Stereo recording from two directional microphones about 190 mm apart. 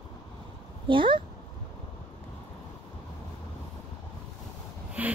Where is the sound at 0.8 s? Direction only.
25° right (ahead or behind).